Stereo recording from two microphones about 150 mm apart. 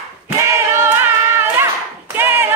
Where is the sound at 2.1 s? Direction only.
15° right (ahead or behind).